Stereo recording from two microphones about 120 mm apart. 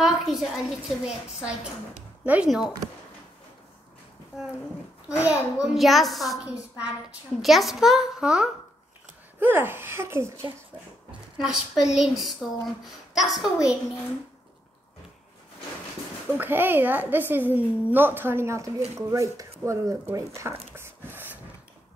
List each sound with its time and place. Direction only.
0.0 s speech: centre (ahead or behind)
5.0 s speech: 10° right (ahead or behind)
9.4 s speech: 15° right (ahead or behind)
11.3 s speech: 5° right (ahead or behind)
16.3 s speech: 15° right (ahead or behind)
20.7 s dog: 20° right (ahead or behind)